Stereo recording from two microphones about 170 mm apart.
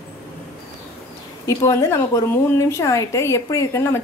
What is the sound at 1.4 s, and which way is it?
A woman's voice, 15° left (ahead or behind).